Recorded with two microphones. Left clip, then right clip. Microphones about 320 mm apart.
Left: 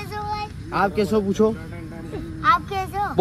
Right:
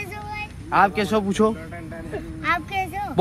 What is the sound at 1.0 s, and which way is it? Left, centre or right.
Speech, right.